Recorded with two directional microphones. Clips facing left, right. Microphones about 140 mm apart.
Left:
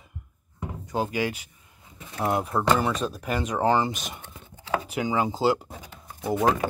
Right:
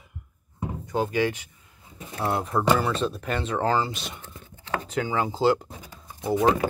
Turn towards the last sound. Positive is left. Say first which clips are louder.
# right 2 dB
turn(degrees=0)  # may be behind; listen again after turning